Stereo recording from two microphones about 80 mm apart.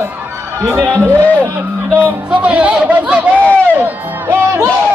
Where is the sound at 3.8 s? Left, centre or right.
Right.